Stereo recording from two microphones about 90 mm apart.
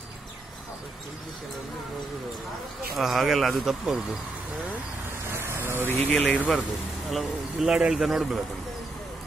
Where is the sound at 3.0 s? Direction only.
5° right (ahead or behind).